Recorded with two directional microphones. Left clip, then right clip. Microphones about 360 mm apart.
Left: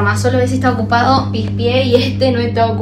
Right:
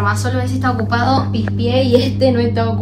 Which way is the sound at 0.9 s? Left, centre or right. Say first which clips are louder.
Left 5 dB; centre.